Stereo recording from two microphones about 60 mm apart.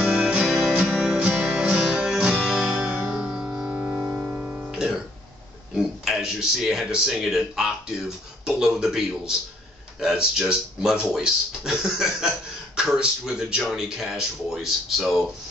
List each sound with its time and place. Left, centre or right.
0.0 s music: centre
2.4 s guitar: centre
2.7 s music: centre
4.6 s music: centre
5.8 s speech: centre